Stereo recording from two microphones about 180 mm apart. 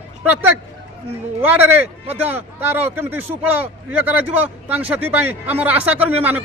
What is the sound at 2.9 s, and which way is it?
Speech, 10° right (ahead or behind).